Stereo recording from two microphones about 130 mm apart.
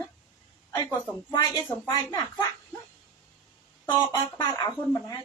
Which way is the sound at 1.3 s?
30° left (ahead or behind).